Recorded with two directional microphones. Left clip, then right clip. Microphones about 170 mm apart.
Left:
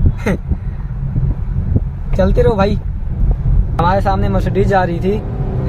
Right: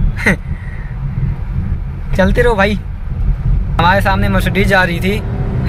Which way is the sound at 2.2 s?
10° left (ahead or behind).